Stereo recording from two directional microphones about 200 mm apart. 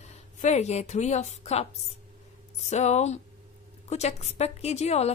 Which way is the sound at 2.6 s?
35° left (ahead or behind).